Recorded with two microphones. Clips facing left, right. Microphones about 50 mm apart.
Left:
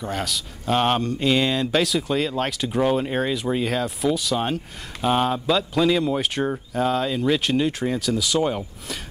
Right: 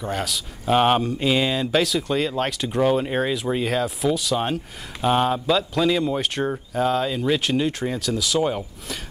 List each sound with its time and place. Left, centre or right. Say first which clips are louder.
0.0 s speech: right 1 dB; centre